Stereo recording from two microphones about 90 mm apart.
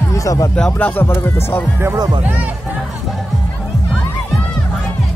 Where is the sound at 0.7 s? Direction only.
20° left (ahead or behind).